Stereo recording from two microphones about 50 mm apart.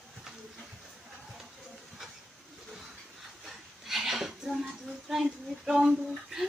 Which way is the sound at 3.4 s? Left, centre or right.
Centre.